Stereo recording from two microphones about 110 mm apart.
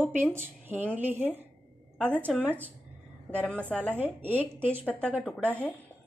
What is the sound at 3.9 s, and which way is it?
Speech, 15° right (ahead or behind).